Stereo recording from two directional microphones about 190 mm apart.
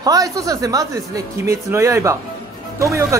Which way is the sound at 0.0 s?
20° right (ahead or behind).